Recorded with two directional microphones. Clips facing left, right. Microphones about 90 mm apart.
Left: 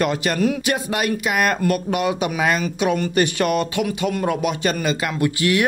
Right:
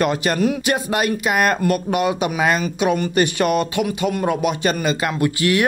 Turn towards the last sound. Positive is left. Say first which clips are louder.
# right 1 dB
turn(degrees=-35)  # may be behind; listen again after turning